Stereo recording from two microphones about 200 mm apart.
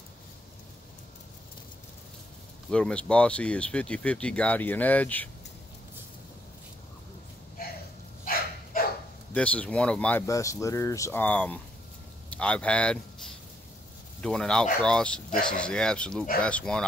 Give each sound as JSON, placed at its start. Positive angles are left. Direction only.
{"t": 2.7, "sound": "speech", "side_deg": 5}
{"t": 8.7, "sound": "bow-wow", "side_deg": 45}
{"t": 9.3, "sound": "speech", "side_deg": 5}